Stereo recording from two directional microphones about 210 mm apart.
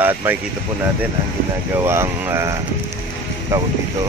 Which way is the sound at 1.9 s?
10° right (ahead or behind).